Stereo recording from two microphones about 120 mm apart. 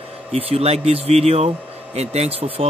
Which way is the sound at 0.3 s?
55° right (ahead or behind).